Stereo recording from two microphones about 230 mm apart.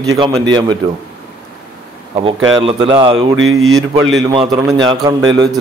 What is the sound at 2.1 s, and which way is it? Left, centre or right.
A man's voice, right.